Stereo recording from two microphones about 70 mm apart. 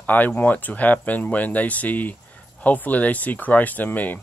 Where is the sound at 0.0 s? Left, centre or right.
Left.